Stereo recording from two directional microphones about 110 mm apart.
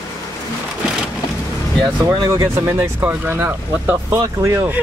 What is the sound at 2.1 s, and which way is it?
Speech, 30° right (ahead or behind).